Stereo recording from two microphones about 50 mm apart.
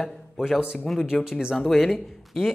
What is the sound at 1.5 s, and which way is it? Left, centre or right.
Speech, centre.